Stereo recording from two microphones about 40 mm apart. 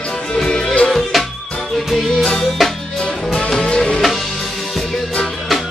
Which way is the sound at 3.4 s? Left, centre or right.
Centre.